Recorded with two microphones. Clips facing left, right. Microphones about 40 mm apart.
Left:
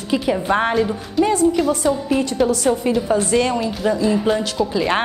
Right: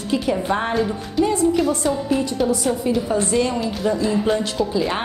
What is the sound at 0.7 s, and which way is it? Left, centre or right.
A woman's voice, centre.